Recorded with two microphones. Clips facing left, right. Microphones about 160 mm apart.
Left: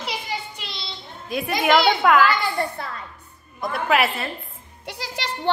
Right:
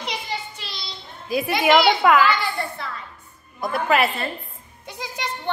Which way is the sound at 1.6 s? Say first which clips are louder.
Right 1 dB; centre (ahead or behind).